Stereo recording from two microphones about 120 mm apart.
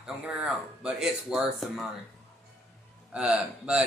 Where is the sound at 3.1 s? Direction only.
10° right (ahead or behind).